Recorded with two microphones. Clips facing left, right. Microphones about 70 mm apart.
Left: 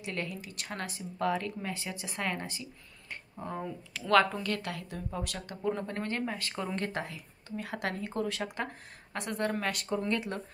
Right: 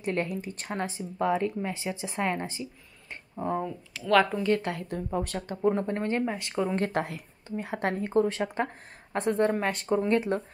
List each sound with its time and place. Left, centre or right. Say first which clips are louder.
0.0 s speech: right 7 dB; right
0.7 s speech: right 5 dB; right
3.4 s speech: right 8 dB; centre
4.4 s speech: right 8 dB; right
6.7 s speech: right 6 dB; right
7.4 s speech: right 5 dB; right